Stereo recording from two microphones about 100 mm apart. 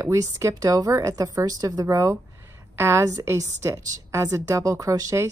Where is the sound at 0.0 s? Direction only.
35° right (ahead or behind).